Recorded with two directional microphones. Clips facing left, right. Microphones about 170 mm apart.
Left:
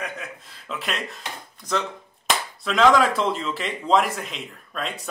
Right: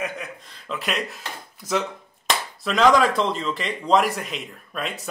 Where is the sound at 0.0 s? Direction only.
Centre (ahead or behind).